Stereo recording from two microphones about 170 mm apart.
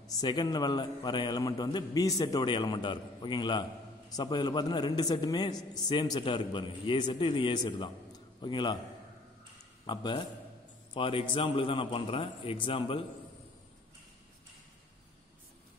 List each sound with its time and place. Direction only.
0.0 s a man's voice: 25° left (ahead or behind)
9.8 s a man's voice: 25° left (ahead or behind)